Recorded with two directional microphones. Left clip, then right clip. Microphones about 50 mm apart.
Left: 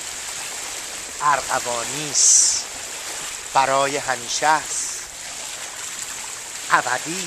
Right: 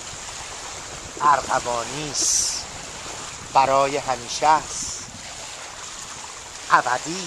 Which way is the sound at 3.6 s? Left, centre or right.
Right.